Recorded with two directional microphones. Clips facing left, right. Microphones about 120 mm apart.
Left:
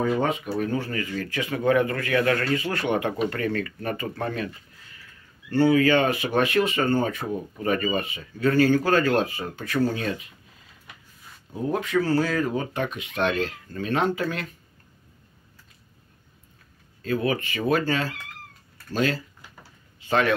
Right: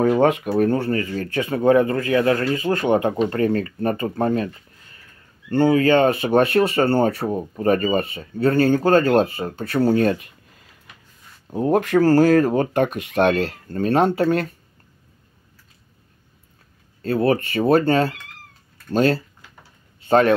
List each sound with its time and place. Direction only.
0.0 s speech: 65° right (ahead or behind)
0.7 s speech: 40° right (ahead or behind)
5.5 s speech: 50° right (ahead or behind)
6.4 s speech: 35° right (ahead or behind)
9.9 s speech: 50° right (ahead or behind)
11.5 s speech: 55° right (ahead or behind)
12.0 s speech: 45° right (ahead or behind)
17.0 s speech: 35° right (ahead or behind)
18.9 s a man's voice: 35° right (ahead or behind)